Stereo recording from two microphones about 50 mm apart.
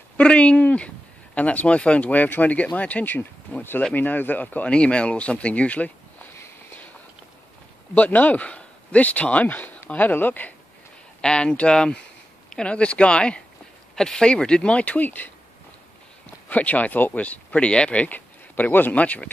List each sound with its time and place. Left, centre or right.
0.2 s speech: left
4.6 s speech: left
7.9 s speech: left
11.1 s speech: centre; by 15.3 s left
16.4 s speech: left